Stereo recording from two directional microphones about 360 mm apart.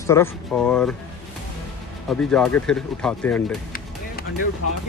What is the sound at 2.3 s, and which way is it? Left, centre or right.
Speech, centre.